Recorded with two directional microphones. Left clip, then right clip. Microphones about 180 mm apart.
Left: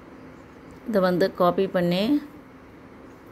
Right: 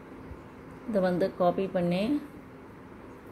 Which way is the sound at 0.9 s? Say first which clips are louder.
Left 6 dB; 30° left (ahead or behind).